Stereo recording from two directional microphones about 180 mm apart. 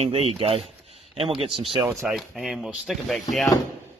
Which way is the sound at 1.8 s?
Centre (ahead or behind).